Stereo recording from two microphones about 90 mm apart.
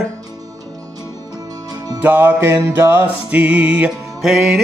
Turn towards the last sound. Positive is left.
turn(degrees=-5)  # may be behind; listen again after turning